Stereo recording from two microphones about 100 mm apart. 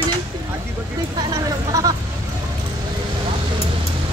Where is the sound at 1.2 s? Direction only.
40° right (ahead or behind).